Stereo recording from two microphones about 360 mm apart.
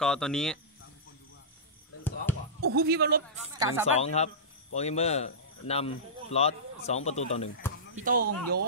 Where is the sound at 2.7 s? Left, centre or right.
Right.